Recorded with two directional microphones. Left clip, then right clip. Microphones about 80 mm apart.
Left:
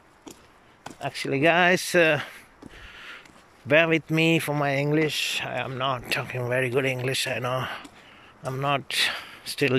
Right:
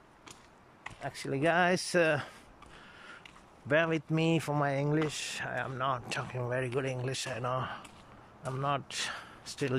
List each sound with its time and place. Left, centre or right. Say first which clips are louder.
1.1 s speech: left 8 dB; centre
2.9 s a sound: left 10 dB; centre
3.6 s speech: left 9 dB; centre
5.8 s speech: left 8 dB; centre